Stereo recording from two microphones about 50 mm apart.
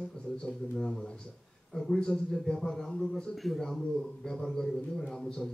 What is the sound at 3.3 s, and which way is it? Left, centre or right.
Speech, centre.